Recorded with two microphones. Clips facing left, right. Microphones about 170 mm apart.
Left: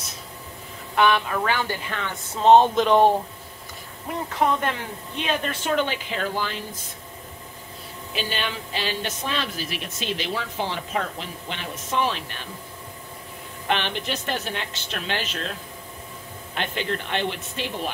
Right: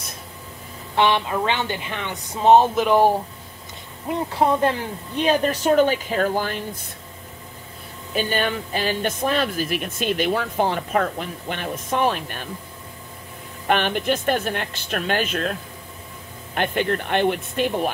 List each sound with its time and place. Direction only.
0.9 s a woman's voice: 25° right (ahead or behind); by 3.1 s 5° right (ahead or behind)
4.3 s speech: 30° right (ahead or behind); by 6.8 s 50° right (ahead or behind)
8.1 s speech: 50° right (ahead or behind)
13.7 s speech: 50° right (ahead or behind)
16.5 s speech: 50° right (ahead or behind)